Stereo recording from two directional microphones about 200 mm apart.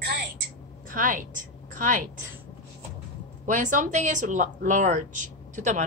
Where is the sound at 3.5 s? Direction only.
40° right (ahead or behind).